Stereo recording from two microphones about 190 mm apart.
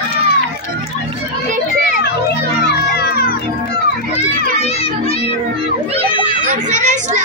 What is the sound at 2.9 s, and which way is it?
Music, 55° left (ahead or behind).